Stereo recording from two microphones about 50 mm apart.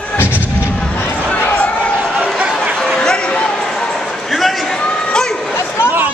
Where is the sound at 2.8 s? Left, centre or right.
Centre.